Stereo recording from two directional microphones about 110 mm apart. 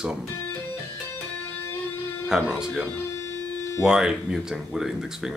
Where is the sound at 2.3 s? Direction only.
5° right (ahead or behind).